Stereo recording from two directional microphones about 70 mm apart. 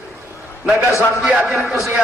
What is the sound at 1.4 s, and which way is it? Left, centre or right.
Speech, centre.